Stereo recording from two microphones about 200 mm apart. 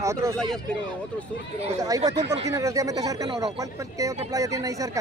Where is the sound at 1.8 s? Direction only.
20° right (ahead or behind).